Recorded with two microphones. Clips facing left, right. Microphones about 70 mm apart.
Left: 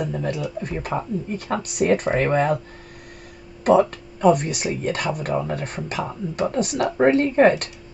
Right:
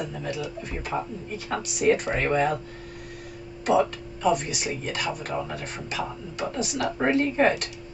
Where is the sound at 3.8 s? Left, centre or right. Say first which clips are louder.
Left 4 dB; left.